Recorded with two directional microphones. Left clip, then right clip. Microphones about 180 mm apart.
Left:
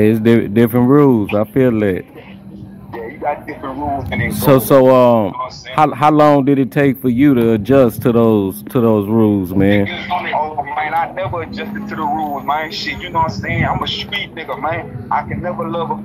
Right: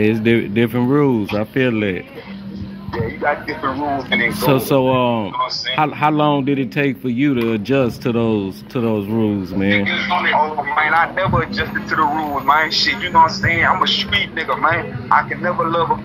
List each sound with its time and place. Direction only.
0.0 s speech: 45° left (ahead or behind)
3.0 s speech: 10° right (ahead or behind)
4.5 s speech: 55° left (ahead or behind)
5.8 s speech: 35° left (ahead or behind); by 9.7 s 55° left (ahead or behind)
9.7 s speech: centre (ahead or behind)